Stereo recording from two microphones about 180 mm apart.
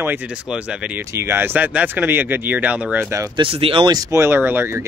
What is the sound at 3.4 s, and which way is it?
A man's voice, 30° right (ahead or behind).